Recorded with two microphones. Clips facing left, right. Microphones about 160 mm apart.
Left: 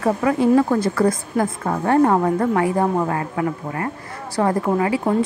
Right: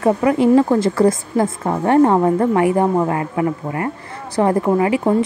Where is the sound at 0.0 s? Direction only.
20° right (ahead or behind).